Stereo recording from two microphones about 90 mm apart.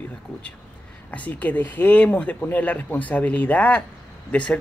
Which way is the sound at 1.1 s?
15° left (ahead or behind).